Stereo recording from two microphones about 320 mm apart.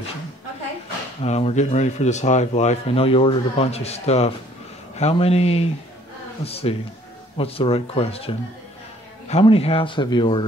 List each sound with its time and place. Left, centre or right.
1.2 s speech: centre